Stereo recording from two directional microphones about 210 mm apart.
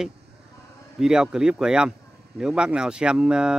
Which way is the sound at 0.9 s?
Centre (ahead or behind).